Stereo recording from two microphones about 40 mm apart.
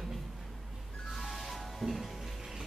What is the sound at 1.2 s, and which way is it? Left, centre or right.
Music, centre.